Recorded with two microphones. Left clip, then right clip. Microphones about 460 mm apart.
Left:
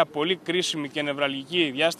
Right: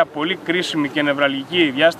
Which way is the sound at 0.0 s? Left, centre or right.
Left.